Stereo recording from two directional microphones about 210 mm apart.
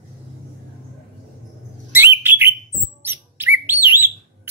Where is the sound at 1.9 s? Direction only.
10° right (ahead or behind).